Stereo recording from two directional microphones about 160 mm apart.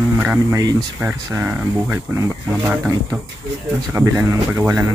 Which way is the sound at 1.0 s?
15° right (ahead or behind).